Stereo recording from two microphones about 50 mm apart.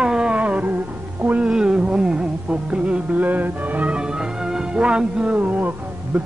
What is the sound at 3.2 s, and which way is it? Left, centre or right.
Music, right.